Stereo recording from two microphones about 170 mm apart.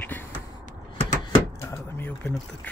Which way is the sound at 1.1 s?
20° left (ahead or behind).